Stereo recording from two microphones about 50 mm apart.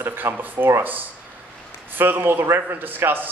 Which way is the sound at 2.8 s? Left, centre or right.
Right.